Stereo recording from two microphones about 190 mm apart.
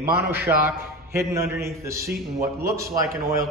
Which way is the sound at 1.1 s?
15° right (ahead or behind).